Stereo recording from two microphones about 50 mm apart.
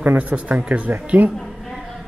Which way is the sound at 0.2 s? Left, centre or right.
Right.